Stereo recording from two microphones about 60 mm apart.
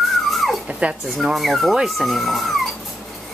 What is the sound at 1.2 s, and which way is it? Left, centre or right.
Speech, centre.